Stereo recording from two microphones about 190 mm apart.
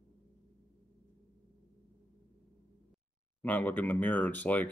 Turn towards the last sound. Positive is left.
turn(degrees=10)  # may be behind; listen again after turning